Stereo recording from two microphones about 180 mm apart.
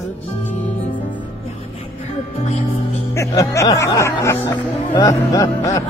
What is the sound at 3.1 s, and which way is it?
Speech, 15° left (ahead or behind).